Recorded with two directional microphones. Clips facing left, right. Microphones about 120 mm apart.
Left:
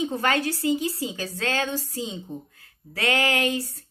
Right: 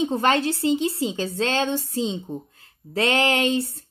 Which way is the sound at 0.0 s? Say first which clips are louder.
Right 4 dB; 25° right (ahead or behind).